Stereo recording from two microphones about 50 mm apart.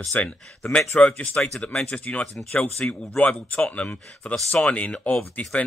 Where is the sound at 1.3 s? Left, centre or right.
Centre.